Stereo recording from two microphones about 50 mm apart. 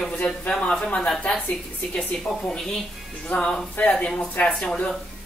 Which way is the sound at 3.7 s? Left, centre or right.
Left.